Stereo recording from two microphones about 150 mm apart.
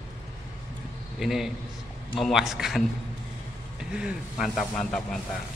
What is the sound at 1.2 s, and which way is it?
Speech, centre (ahead or behind).